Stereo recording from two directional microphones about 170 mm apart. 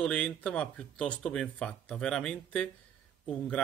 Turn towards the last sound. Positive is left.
turn(degrees=5)  # may be behind; listen again after turning